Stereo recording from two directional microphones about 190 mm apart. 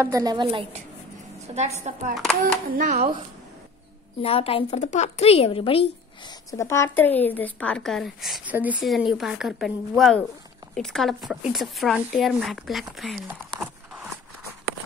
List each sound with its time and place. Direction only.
0.0 s a woman's voice: 20° right (ahead or behind)
1.5 s a woman's voice: 35° right (ahead or behind)
2.1 s a woman's voice: centre (ahead or behind)
2.7 s a child's voice: 45° right (ahead or behind)
4.2 s a woman's voice: 30° left (ahead or behind)
6.5 s a woman's voice: 15° left (ahead or behind); by 13.7 s centre (ahead or behind)